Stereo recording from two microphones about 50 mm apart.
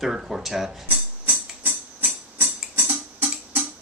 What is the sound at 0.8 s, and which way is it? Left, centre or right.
Music, right.